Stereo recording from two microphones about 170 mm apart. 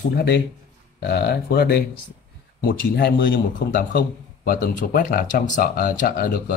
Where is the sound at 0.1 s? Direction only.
70° left (ahead or behind).